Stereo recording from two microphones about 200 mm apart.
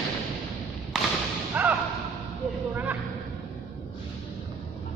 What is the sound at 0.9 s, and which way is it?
Whip, 5° right (ahead or behind).